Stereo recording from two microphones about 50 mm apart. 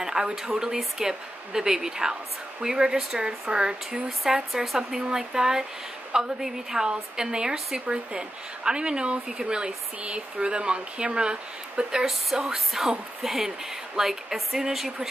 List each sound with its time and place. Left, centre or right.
0.0 s a woman's voice: centre
12.1 s speech: centre